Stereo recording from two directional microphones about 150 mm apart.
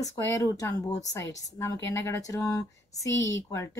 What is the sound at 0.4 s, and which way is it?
Speech, 20° left (ahead or behind).